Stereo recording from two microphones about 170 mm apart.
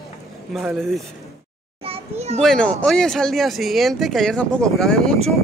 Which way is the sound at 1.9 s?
40° right (ahead or behind).